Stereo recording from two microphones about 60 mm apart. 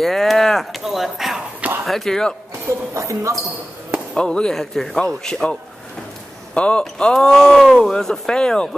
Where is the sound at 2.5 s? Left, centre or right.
Right.